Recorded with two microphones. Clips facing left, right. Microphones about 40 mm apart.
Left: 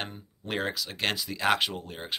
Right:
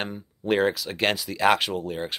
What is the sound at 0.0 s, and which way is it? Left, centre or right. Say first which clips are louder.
Speech: right 6 dB; centre.